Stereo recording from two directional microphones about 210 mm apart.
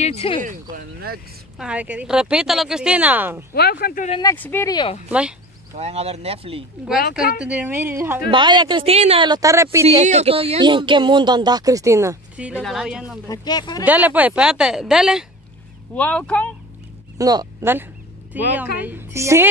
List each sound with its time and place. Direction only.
0.0 s speech: 30° left (ahead or behind)
0.4 s speech: 40° right (ahead or behind)
1.6 s speech: 5° right (ahead or behind)
3.5 s speech: 50° left (ahead or behind)
4.2 s speech: 10° left (ahead or behind)
5.8 s speech: 30° right (ahead or behind)
7.0 s speech: 45° left (ahead or behind)
7.3 s a woman's voice: 5° right (ahead or behind)
8.3 s speech: 20° right (ahead or behind)
10.0 s speech: 30° right (ahead or behind); by 13.2 s 5° right (ahead or behind)
13.3 s speech: 20° left (ahead or behind)
13.8 s speech: 10° right (ahead or behind)
17.2 s a woman's voice: 15° right (ahead or behind)